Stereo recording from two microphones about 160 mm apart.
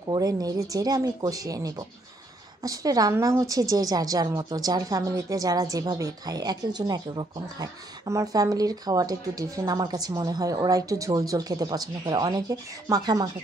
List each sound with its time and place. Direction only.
0.1 s a woman's voice: 25° right (ahead or behind)